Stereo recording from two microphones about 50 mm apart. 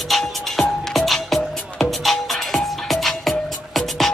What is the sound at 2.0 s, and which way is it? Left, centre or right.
Music, centre.